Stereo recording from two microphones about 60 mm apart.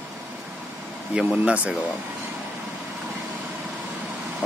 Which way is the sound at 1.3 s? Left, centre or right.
Right.